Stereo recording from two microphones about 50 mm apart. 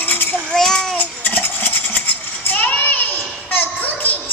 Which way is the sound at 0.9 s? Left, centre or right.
Left.